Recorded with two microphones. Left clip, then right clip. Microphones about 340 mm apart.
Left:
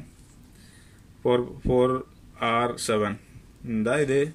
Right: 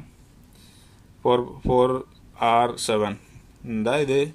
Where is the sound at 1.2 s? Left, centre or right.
Centre.